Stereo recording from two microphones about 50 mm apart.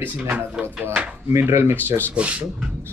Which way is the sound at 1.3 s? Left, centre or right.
Right.